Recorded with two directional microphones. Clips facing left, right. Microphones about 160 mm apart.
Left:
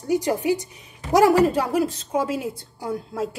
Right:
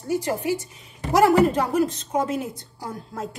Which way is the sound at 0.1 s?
15° left (ahead or behind).